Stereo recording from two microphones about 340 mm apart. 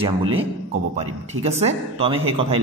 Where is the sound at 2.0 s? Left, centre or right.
Centre.